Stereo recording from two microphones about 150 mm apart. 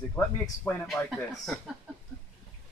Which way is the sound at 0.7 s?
15° left (ahead or behind).